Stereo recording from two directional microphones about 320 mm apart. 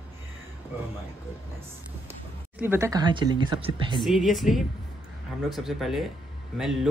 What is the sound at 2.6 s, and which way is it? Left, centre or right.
Speech, centre.